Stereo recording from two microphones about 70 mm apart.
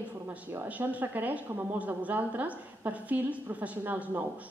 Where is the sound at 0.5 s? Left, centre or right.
Right.